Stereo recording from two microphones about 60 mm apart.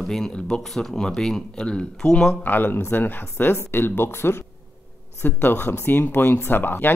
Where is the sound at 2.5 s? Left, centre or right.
Left.